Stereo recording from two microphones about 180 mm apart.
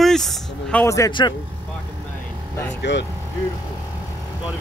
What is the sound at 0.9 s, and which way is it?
Speech, 20° left (ahead or behind).